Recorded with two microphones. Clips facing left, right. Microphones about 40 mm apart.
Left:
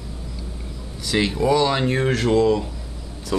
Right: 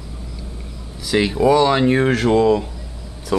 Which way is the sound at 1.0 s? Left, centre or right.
Centre.